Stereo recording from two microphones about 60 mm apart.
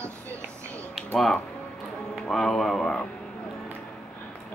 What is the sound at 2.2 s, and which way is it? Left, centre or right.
Speech, centre.